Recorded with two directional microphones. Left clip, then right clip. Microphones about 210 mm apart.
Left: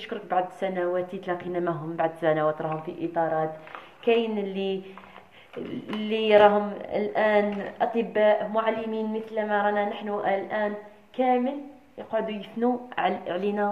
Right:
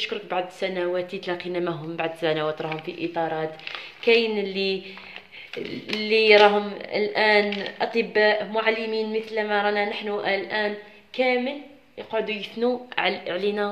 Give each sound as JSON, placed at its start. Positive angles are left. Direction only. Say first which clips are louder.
{"t": 0.0, "sound": "speech", "louder": "even", "side_deg": -20}
{"t": 2.7, "sound": "speech", "louder": "right 1 dB", "side_deg": -25}
{"t": 6.0, "sound": "speech", "louder": "right 3 dB", "side_deg": -20}